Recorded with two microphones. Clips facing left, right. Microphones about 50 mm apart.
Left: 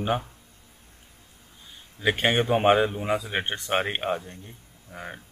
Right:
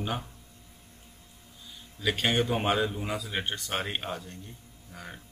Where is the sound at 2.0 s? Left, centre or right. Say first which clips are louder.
Left 4 dB; left.